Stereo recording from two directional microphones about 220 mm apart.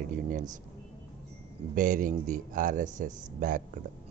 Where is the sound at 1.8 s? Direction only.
35° right (ahead or behind).